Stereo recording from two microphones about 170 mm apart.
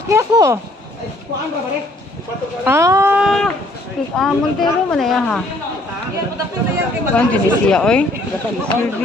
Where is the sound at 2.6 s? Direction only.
15° right (ahead or behind).